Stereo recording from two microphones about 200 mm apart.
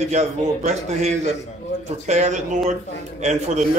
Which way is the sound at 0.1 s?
35° right (ahead or behind).